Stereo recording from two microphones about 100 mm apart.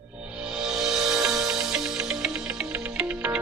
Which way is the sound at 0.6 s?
5° right (ahead or behind).